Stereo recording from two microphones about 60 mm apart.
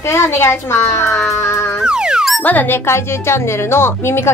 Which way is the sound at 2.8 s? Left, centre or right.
Left.